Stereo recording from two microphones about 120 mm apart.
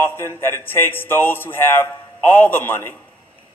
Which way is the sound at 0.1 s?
20° left (ahead or behind).